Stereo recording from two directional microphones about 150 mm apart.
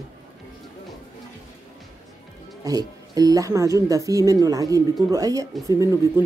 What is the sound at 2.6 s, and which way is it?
Speech, 25° right (ahead or behind).